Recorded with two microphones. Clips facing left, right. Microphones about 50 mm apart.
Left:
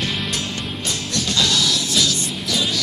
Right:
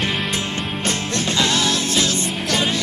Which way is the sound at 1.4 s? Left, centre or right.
Right.